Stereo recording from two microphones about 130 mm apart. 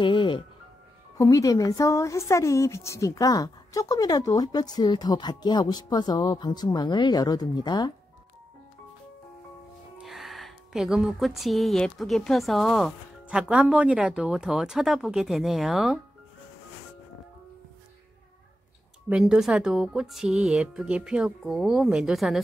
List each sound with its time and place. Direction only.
0.0 s music: 40° left (ahead or behind)
1.1 s speech: 25° left (ahead or behind)
9.9 s speech: centre (ahead or behind)
19.0 s speech: 5° right (ahead or behind)